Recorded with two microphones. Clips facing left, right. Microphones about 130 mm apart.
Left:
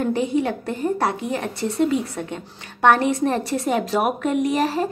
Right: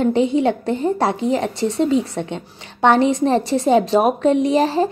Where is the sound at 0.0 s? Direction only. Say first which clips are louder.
Right 5 dB; 25° right (ahead or behind).